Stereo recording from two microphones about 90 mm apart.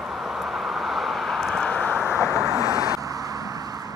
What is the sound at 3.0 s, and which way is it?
Vehicle, 40° right (ahead or behind).